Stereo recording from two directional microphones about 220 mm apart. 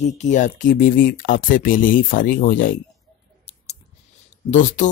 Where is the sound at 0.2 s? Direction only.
35° left (ahead or behind).